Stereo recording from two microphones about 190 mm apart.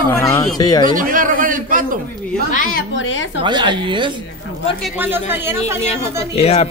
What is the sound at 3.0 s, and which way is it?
Speech, 80° left.